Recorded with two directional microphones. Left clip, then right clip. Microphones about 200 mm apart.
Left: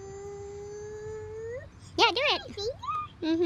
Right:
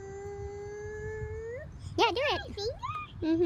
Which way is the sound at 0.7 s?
Centre (ahead or behind).